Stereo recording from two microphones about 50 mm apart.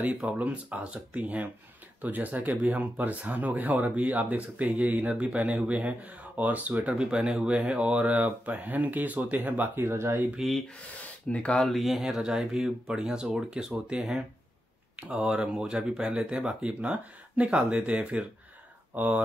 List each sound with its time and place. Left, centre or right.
0.0 s speech: right
5.1 s speech: right
7.0 s speech: centre; by 9.8 s right
9.8 s speech: right
10.4 s speech: centre
11.2 s speech: centre
11.6 s speech: centre
18.9 s speech: right